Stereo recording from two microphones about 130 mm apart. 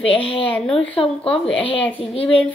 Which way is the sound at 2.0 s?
45° left (ahead or behind).